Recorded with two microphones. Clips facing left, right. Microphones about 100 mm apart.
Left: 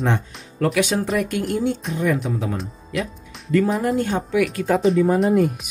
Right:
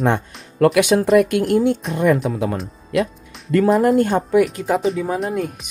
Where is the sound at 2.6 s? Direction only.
Centre (ahead or behind).